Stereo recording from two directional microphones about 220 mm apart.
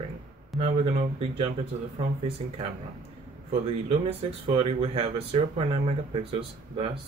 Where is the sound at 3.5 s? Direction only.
25° right (ahead or behind).